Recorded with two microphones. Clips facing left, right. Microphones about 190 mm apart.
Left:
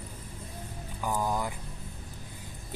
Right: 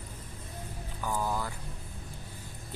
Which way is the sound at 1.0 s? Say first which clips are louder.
Left 2 dB; 15° left (ahead or behind).